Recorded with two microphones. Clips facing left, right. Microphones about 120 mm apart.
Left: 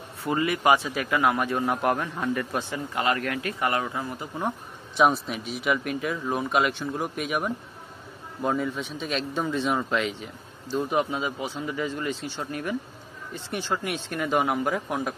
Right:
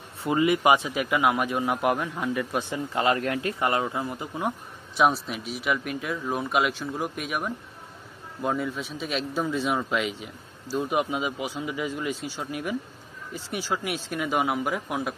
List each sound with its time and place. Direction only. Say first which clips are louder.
0.2 s a man's voice: right 3 dB; 20° right (ahead or behind)
2.9 s a man's voice: right 2 dB; 25° right (ahead or behind)
4.5 s a man's voice: even; centre (ahead or behind)